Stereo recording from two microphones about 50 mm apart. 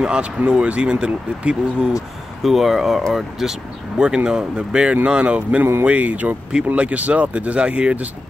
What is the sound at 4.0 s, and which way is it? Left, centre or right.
Speech, centre.